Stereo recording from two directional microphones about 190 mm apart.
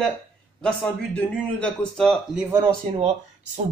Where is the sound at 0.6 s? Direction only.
5° left (ahead or behind).